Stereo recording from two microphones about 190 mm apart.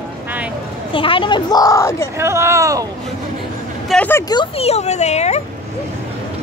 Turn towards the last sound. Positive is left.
turn(degrees=35)  # may be behind; listen again after turning